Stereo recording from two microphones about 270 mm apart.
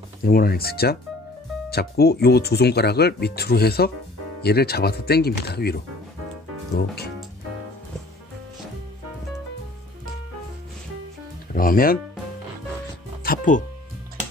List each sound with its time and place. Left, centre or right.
0.2 s speech: left
11.5 s speech: left
13.2 s music: left